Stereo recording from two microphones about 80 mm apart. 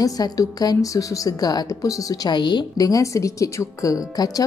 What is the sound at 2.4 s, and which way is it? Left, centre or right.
Speech, left.